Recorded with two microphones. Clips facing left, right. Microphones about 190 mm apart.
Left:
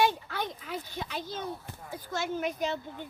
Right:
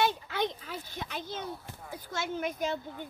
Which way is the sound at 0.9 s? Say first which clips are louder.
Left 2 dB; 50° right (ahead or behind).